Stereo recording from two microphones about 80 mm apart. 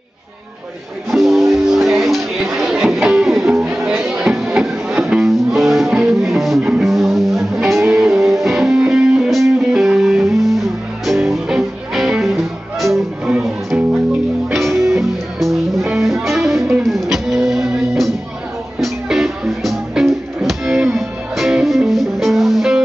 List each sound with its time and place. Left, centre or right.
1.1 s music: centre
14.5 s music: centre